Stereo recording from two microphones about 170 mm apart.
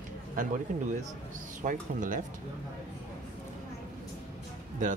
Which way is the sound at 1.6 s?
50° right (ahead or behind).